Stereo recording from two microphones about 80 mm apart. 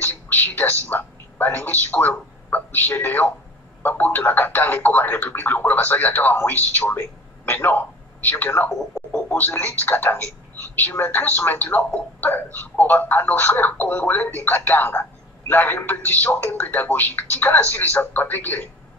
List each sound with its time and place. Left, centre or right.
0.0 s a sound: left
0.8 s a man's voice: left
8.7 s speech: centre
9.4 s speech: left